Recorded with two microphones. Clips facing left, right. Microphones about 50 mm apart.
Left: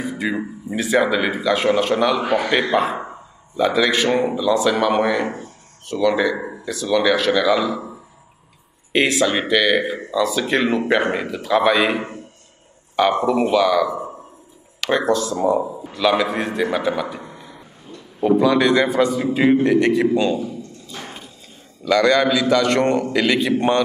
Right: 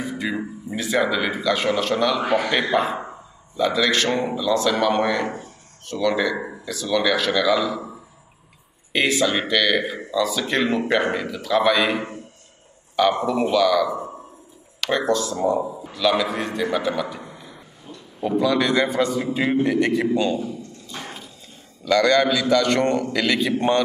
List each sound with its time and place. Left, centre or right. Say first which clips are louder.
0.2 s a man's voice: left 3 dB; centre
8.9 s a man's voice: left 2 dB; centre
15.0 s speech: left 2 dB; centre
15.5 s a man's voice: left 3 dB; centre
17.9 s a sound: left 1 dB; centre
18.2 s a man's voice: left 5 dB; centre
21.8 s a man's voice: left 2 dB; centre